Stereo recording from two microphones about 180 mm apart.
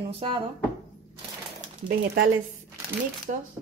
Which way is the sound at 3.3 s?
50° right (ahead or behind).